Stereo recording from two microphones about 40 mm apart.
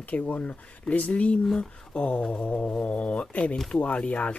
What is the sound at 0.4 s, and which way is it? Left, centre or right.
Speech, left.